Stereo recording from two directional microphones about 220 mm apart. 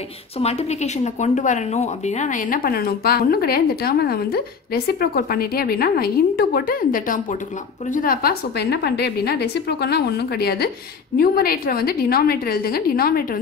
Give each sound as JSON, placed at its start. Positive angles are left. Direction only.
{"t": 0.4, "sound": "speech", "side_deg": 30}